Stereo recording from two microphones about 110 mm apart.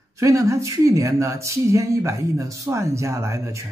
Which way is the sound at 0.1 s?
30° right (ahead or behind).